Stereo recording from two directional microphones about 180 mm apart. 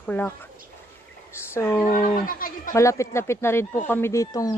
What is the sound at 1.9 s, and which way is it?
Speech, 45° left (ahead or behind).